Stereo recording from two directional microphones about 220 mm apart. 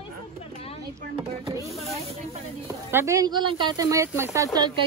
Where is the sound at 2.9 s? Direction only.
10° right (ahead or behind).